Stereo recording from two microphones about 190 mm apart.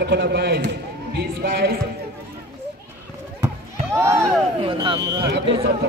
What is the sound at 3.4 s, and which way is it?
Chop, 15° right (ahead or behind).